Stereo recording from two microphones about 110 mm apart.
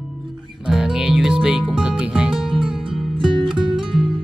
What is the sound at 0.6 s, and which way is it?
Music, 5° right (ahead or behind).